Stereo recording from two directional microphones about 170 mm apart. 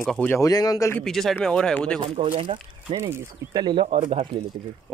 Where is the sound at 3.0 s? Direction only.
15° right (ahead or behind).